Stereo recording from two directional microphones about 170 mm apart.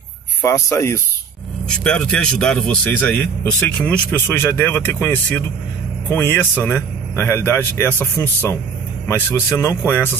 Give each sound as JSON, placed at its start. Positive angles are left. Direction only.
{"t": 0.4, "sound": "a man's voice", "side_deg": 15}
{"t": 1.7, "sound": "a man's voice", "side_deg": 5}